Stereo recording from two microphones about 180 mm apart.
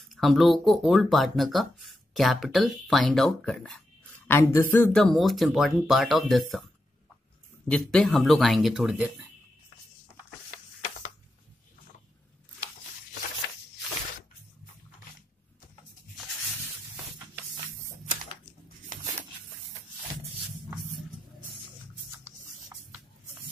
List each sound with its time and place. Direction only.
0.1 s speech: centre (ahead or behind)
7.7 s speech: 5° left (ahead or behind)
22.2 s a sound: 15° right (ahead or behind)